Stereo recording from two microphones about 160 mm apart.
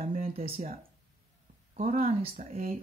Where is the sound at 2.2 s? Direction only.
45° right (ahead or behind).